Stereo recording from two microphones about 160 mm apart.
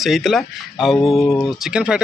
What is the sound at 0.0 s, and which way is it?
Speech, centre (ahead or behind).